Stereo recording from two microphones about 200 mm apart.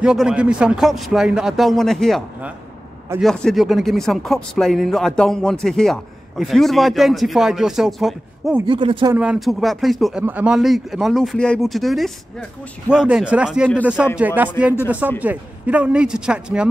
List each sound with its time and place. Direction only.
0.0 s a man's voice: 5° right (ahead or behind)
8.6 s speech: 25° right (ahead or behind)
9.1 s a man's voice: 5° right (ahead or behind)